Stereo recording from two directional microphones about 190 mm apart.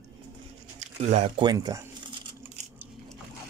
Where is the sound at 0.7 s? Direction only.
35° right (ahead or behind).